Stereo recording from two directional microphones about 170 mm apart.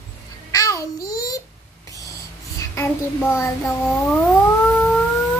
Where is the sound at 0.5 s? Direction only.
20° left (ahead or behind).